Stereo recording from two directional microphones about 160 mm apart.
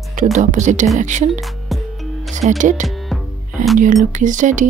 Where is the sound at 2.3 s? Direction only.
50° right (ahead or behind).